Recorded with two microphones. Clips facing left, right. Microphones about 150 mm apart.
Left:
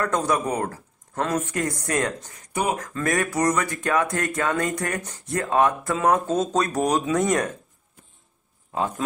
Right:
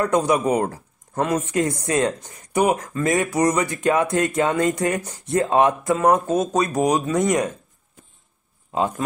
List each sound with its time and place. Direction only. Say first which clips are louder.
0.0 s speech: right 4 dB; 15° right (ahead or behind)
5.9 s speech: right 2 dB; 10° right (ahead or behind)